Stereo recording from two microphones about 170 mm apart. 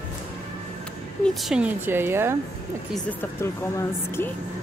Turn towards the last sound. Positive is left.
turn(degrees=15)  # may be behind; listen again after turning